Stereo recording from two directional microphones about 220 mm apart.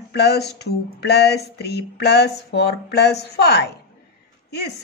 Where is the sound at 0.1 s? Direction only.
50° left (ahead or behind).